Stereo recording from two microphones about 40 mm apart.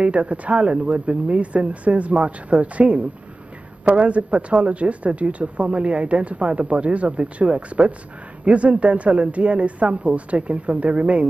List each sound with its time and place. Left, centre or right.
0.0 s speech: right